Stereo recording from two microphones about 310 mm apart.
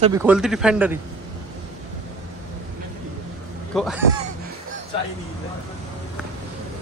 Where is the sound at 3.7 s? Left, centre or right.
Centre.